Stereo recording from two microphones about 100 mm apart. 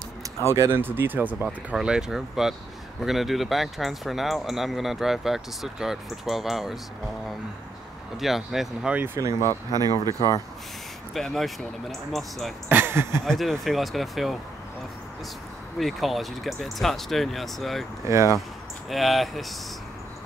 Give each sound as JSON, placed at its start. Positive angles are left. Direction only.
{"t": 0.5, "sound": "speech", "side_deg": -25}
{"t": 8.2, "sound": "speech", "side_deg": 0}
{"t": 8.9, "sound": "speech", "side_deg": -25}
{"t": 9.7, "sound": "speech", "side_deg": -40}
{"t": 11.1, "sound": "speech", "side_deg": 0}
{"t": 12.6, "sound": "speech", "side_deg": -20}
{"t": 13.2, "sound": "speech", "side_deg": 5}
{"t": 15.8, "sound": "speech", "side_deg": 0}
{"t": 18.0, "sound": "speech", "side_deg": -30}
{"t": 18.9, "sound": "speech", "side_deg": 0}